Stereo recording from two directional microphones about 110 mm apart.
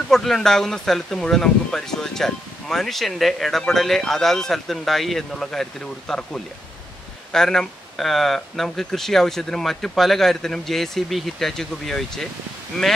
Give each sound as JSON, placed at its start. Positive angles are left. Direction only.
{"t": 0.1, "sound": "speech", "side_deg": 5}